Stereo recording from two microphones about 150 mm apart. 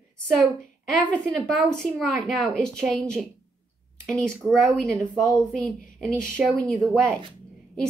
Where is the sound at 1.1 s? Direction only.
5° left (ahead or behind).